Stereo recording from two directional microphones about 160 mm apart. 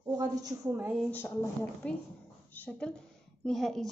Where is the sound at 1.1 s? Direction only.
15° left (ahead or behind).